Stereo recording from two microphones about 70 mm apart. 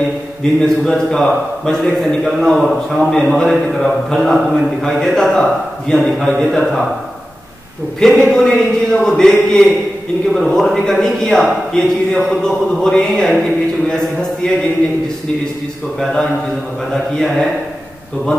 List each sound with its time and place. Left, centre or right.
0.4 s a man's voice: centre
8.0 s a man's voice: centre
14.4 s a man's voice: centre
16.0 s a man's voice: centre